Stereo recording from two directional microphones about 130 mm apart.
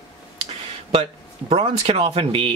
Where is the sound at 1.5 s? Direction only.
50° right (ahead or behind).